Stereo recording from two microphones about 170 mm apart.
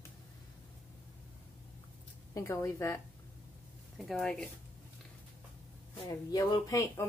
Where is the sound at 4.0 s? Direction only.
Centre (ahead or behind).